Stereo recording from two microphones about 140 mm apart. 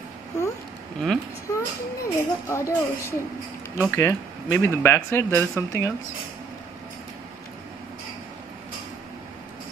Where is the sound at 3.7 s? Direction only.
15° left (ahead or behind).